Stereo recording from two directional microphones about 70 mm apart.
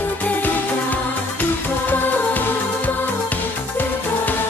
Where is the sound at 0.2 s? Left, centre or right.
Left.